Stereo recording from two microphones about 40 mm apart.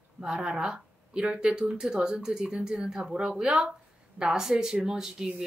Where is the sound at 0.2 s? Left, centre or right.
Centre.